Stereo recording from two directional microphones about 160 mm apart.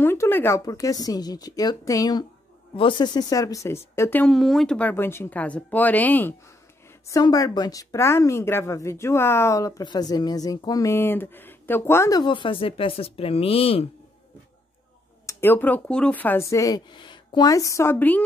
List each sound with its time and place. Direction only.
0.0 s a woman's voice: 15° left (ahead or behind)
4.3 s speech: centre (ahead or behind)
7.1 s a woman's voice: 25° left (ahead or behind)
12.2 s speech: 30° left (ahead or behind)
15.2 s speech: 15° left (ahead or behind)